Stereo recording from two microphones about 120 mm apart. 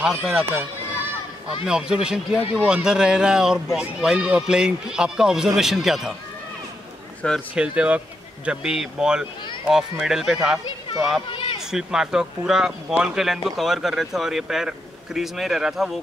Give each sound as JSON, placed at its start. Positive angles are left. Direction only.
{"t": 0.0, "sound": "speech", "side_deg": -5}
{"t": 1.7, "sound": "a man's voice", "side_deg": -5}
{"t": 7.2, "sound": "a man's voice", "side_deg": 5}
{"t": 7.5, "sound": "a man's voice", "side_deg": -10}
{"t": 11.2, "sound": "speech", "side_deg": 45}
{"t": 11.6, "sound": "speech", "side_deg": -5}